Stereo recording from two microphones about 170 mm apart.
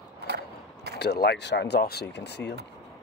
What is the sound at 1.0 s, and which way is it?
Speech, 75° left (ahead or behind).